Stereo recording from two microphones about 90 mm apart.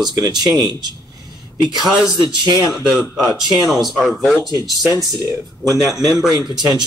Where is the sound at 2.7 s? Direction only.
10° right (ahead or behind).